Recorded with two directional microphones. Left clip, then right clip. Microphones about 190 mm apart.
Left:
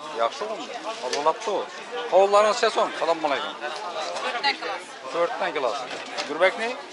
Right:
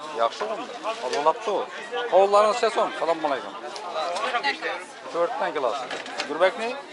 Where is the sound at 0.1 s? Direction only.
5° right (ahead or behind).